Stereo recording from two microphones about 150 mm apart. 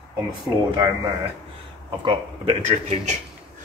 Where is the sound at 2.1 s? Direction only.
35° right (ahead or behind).